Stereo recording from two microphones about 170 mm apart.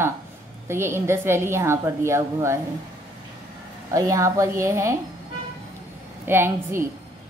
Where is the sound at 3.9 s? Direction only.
20° right (ahead or behind).